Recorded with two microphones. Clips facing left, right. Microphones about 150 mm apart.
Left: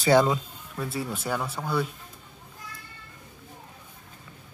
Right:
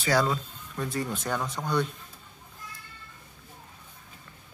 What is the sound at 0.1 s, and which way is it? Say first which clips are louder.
Speech: left 5 dB; 20° left (ahead or behind).